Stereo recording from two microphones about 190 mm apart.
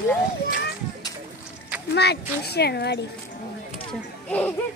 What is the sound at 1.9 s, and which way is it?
Speech, 60° left (ahead or behind).